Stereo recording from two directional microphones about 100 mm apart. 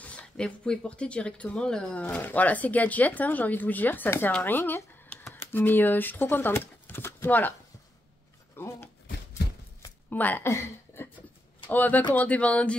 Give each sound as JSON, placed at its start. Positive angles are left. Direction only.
{"t": 0.0, "sound": "speech", "side_deg": 10}
{"t": 8.5, "sound": "a sound", "side_deg": 25}
{"t": 10.0, "sound": "a woman's voice", "side_deg": 20}